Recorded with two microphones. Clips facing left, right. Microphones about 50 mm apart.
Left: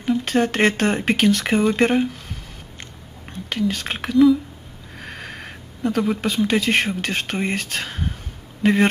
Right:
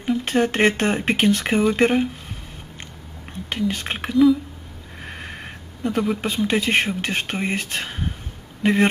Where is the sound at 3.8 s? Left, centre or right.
Centre.